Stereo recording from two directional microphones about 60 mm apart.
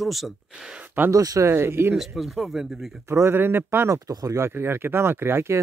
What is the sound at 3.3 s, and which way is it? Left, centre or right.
Speech, right.